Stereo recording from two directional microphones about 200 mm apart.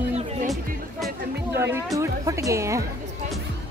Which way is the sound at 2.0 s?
15° right (ahead or behind).